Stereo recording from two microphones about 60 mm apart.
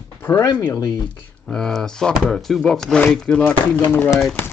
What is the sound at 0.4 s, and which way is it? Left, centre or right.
Speech, left.